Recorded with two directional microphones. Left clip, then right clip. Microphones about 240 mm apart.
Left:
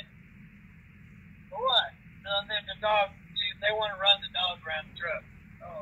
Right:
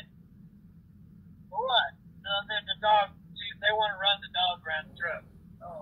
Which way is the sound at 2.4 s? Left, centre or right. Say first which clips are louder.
Right 1 dB; left.